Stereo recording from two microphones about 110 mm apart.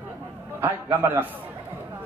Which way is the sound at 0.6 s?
15° right (ahead or behind).